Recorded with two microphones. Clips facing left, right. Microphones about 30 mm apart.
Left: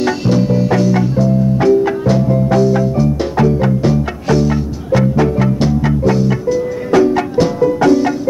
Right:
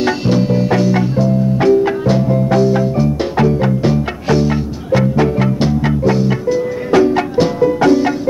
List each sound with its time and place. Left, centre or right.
0.0 s music: right